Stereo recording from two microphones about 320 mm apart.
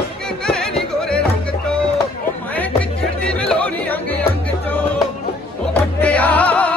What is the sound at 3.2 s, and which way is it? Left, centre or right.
Music, centre.